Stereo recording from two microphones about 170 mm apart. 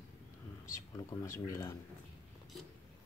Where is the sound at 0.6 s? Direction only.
20° left (ahead or behind).